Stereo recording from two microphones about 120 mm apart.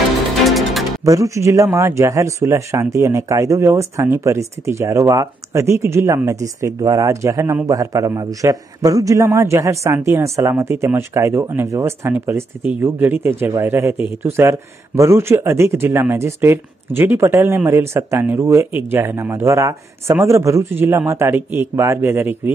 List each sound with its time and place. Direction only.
0.5 s music: centre (ahead or behind)
1.0 s speech: 25° right (ahead or behind)